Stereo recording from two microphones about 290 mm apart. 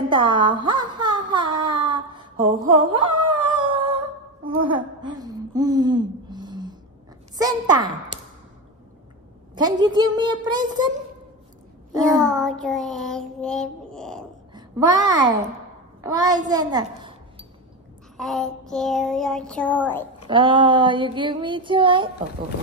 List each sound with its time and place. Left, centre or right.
0.1 s a sound: centre
3.3 s dog: centre
4.6 s a sound: centre
7.3 s child singing: centre
9.6 s child singing: centre
12.0 s child singing: centre
15.0 s child singing: centre
16.0 s a child's voice: centre
18.1 s child singing: centre
20.2 s child singing: centre